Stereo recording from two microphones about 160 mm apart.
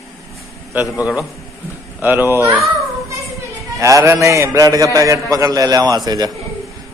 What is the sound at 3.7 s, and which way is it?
A man's voice, 20° right (ahead or behind).